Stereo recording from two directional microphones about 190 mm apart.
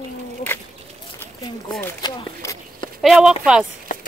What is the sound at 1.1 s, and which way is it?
Speech, 15° left (ahead or behind).